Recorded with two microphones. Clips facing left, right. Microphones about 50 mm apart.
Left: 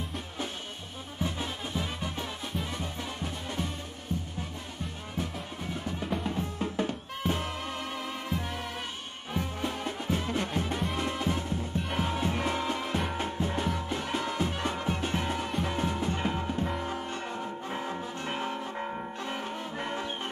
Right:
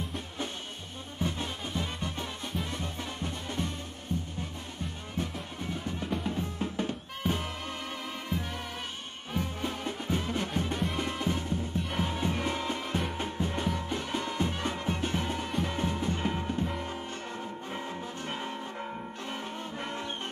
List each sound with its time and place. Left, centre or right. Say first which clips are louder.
1.2 s music: even; centre